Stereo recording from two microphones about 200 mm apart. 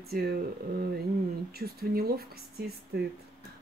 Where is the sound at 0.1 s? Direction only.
50° right (ahead or behind).